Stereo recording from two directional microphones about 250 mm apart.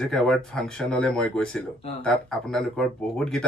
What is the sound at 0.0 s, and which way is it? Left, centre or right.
Speech, centre.